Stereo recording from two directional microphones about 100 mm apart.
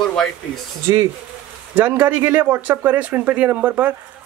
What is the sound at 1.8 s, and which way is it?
Speech, 20° right (ahead or behind).